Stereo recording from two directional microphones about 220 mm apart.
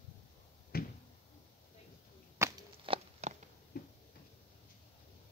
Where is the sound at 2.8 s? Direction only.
25° right (ahead or behind).